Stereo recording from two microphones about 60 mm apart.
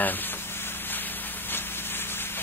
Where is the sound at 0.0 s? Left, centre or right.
Left.